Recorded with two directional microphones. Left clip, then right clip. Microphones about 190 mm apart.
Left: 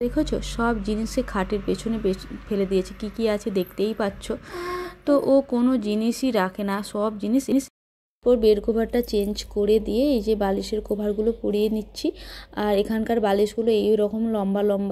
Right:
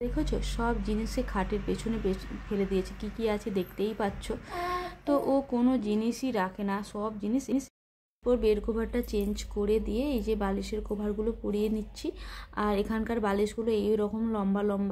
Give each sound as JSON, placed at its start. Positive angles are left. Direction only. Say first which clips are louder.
{"t": 0.0, "sound": "speech", "louder": "left 8 dB", "side_deg": 25}